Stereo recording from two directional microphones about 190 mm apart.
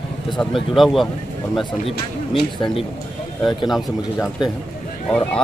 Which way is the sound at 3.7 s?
Centre (ahead or behind).